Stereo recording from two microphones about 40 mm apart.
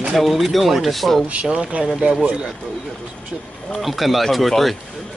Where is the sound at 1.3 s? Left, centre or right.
Right.